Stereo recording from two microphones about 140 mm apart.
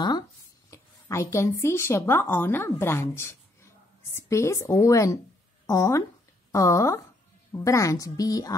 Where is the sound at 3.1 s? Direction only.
20° left (ahead or behind).